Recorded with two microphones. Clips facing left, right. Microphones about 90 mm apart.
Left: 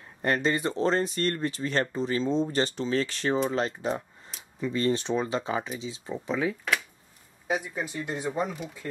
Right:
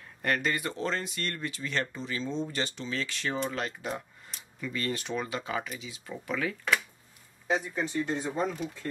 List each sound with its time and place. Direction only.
0.2 s speech: 25° left (ahead or behind)
7.4 s speech: 10° left (ahead or behind)